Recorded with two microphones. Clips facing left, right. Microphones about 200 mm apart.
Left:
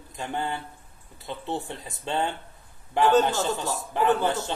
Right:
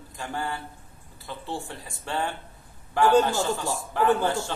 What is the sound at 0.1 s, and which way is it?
Speech, 20° left (ahead or behind).